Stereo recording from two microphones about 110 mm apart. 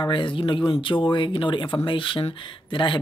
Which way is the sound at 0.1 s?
50° left (ahead or behind).